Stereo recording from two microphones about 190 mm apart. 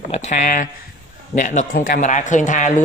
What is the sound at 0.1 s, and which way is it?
A woman's voice, 40° left (ahead or behind).